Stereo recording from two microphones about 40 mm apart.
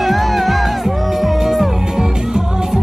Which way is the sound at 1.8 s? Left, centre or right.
Centre.